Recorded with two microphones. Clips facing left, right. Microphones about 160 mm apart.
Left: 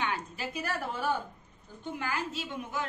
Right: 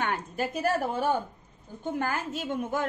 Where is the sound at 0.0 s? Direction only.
50° right (ahead or behind).